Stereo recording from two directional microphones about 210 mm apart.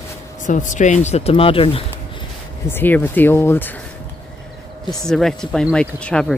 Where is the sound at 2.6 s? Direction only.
10° left (ahead or behind).